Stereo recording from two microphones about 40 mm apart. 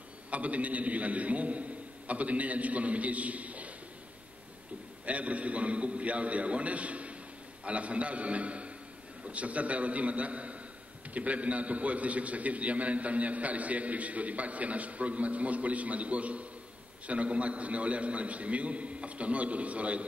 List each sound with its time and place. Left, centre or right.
0.3 s a man's voice: right
5.0 s a man's voice: right